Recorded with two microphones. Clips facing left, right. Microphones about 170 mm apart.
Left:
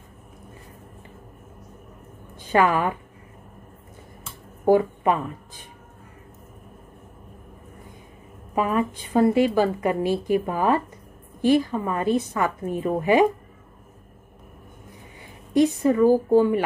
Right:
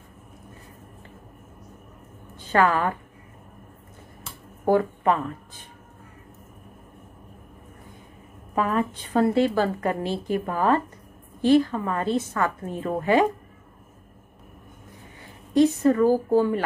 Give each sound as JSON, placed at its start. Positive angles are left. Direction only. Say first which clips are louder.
{"t": 2.3, "sound": "a woman's voice", "louder": "left 1 dB", "side_deg": 15}
{"t": 4.6, "sound": "a woman's voice", "louder": "left 2 dB", "side_deg": 15}
{"t": 8.5, "sound": "a woman's voice", "louder": "left 1 dB", "side_deg": 15}
{"t": 15.5, "sound": "a woman's voice", "louder": "even", "side_deg": 15}